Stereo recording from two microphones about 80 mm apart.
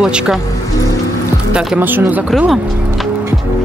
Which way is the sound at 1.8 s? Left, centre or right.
Right.